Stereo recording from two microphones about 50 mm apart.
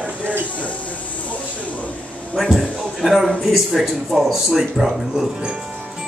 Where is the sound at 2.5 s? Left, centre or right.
Centre.